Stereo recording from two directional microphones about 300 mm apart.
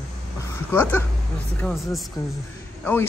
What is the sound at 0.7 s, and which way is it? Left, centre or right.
A man's voice, centre.